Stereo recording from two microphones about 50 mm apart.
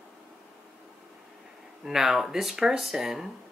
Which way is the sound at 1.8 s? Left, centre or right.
Centre.